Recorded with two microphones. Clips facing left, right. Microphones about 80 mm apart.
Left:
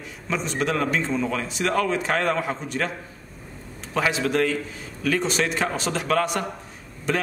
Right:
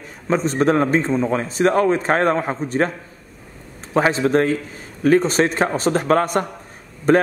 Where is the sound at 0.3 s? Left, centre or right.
Right.